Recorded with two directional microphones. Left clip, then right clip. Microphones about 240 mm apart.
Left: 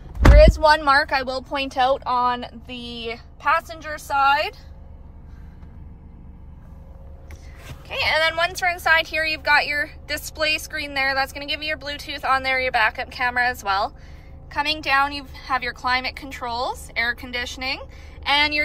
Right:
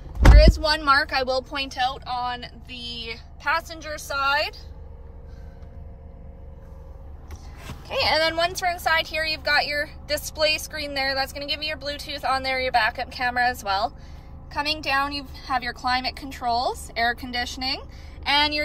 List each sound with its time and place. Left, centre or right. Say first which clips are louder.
0.3 s speech: left 7 dB; centre
1.8 s a woman's voice: left 8 dB; centre
7.6 s a woman's voice: even; right